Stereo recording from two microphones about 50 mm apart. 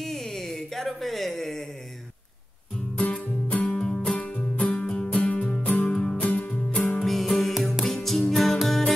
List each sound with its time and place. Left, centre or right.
0.0 s a sound: centre
3.0 s music: left
4.1 s music: left
5.2 s music: left
6.1 s music: left
7.1 s music: centre
7.5 s music: centre
7.8 s music: centre